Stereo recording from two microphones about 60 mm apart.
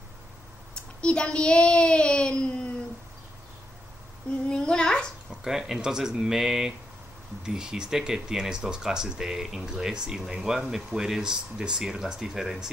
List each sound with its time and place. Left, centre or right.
1.0 s a child's voice: centre
4.5 s a child's voice: centre
5.4 s speech: centre